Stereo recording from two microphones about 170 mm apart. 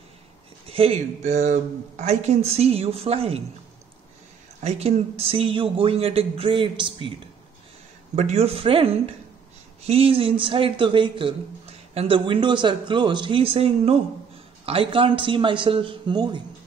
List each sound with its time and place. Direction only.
0.7 s speech: 35° right (ahead or behind)
4.6 s speech: 40° right (ahead or behind)
8.2 s speech: 40° right (ahead or behind)